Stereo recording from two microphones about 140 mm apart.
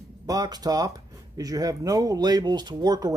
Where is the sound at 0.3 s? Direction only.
30° right (ahead or behind).